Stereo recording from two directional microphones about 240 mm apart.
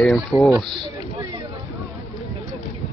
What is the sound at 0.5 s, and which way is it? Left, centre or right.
Speech, centre.